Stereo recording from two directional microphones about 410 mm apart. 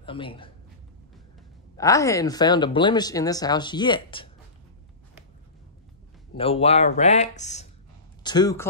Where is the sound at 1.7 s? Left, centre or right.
Centre.